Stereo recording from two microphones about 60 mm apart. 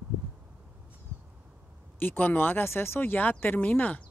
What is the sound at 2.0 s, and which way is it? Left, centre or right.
A woman's voice, left.